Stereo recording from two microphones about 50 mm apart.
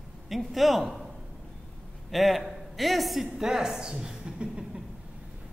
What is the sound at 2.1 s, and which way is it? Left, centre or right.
A man's voice, centre.